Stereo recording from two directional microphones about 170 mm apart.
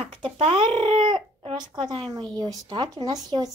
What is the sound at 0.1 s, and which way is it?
A woman's voice, 30° right (ahead or behind).